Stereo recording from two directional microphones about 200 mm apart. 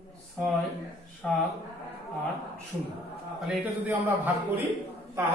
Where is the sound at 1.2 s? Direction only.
5° left (ahead or behind).